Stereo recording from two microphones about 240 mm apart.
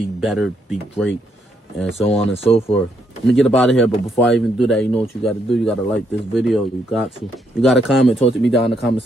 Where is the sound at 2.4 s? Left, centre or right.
Left.